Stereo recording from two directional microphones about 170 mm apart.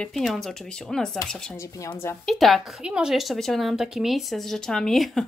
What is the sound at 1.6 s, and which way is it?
Speech, 20° left (ahead or behind).